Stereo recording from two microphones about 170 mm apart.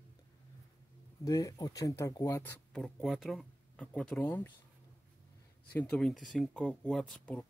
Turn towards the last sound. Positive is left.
turn(degrees=5)  # may be behind; listen again after turning